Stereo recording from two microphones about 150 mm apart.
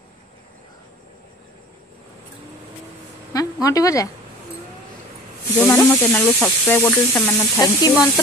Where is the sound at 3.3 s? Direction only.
25° left (ahead or behind).